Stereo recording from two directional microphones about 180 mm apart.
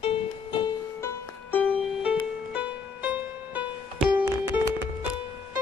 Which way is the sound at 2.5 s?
5° right (ahead or behind).